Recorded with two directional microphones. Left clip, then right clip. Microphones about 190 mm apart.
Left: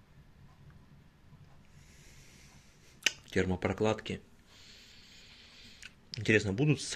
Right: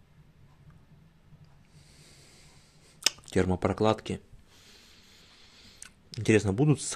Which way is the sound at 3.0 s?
25° right (ahead or behind).